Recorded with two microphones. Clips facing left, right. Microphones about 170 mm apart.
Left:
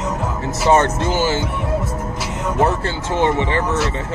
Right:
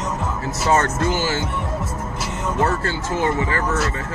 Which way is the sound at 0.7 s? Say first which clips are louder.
Left 3 dB; 25° left (ahead or behind).